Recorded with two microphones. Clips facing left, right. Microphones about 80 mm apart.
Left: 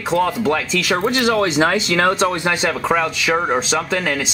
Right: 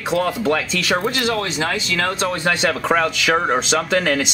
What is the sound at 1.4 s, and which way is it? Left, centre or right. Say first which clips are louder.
Speech: left 6 dB; left.